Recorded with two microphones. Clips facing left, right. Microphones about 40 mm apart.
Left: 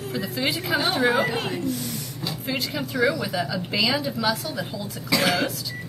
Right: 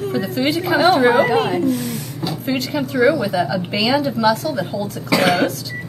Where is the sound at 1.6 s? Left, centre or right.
Right.